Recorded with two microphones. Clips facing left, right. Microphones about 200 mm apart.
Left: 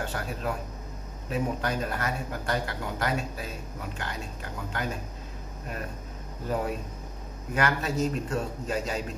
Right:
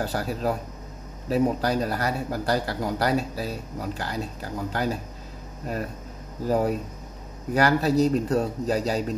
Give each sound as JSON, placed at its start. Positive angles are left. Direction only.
{"t": 0.0, "sound": "a man's voice", "side_deg": -35}
{"t": 6.4, "sound": "a man's voice", "side_deg": -40}